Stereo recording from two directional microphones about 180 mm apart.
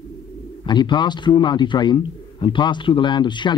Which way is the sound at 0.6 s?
25° left (ahead or behind).